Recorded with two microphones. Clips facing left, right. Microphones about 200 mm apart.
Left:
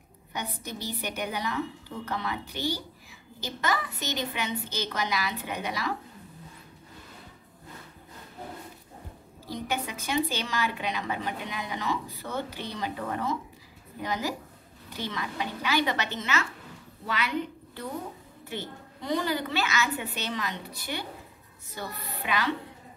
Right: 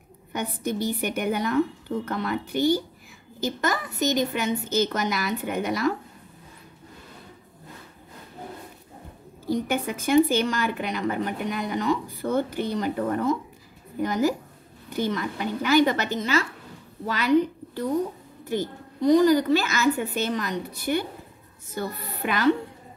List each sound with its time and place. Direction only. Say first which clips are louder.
0.3 s a woman's voice: right 8 dB; 50° right (ahead or behind)
9.5 s a woman's voice: right 7 dB; 50° right (ahead or behind)